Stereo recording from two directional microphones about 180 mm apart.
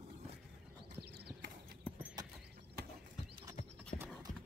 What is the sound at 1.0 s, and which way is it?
Clip-clop, 60° right (ahead or behind).